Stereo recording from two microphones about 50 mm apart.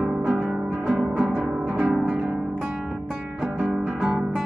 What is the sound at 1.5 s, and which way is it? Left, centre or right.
Music, centre.